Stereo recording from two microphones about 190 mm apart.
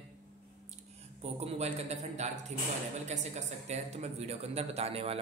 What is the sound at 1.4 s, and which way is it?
Speech, 35° right (ahead or behind).